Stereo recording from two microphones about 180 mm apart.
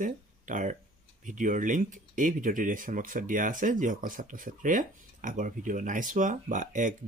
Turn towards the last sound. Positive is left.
turn(degrees=-45)  # may be behind; listen again after turning